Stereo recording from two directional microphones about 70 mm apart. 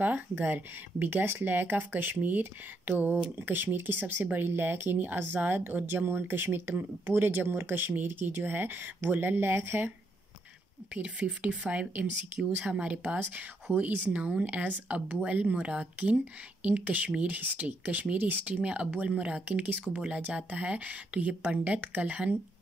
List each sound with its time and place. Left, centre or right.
0.0 s speech: right
10.9 s speech: centre